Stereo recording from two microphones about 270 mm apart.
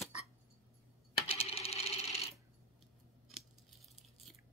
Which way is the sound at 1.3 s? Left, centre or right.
Left.